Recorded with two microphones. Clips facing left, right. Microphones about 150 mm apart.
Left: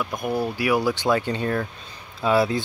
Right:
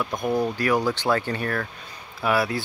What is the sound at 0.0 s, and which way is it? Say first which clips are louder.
Speech: right 1 dB; centre (ahead or behind).